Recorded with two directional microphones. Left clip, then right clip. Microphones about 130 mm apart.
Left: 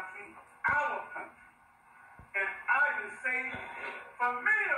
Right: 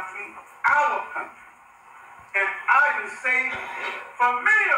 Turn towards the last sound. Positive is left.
turn(degrees=-30)  # may be behind; listen again after turning